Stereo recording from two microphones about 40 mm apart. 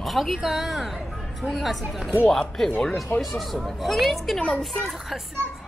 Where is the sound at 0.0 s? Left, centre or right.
Centre.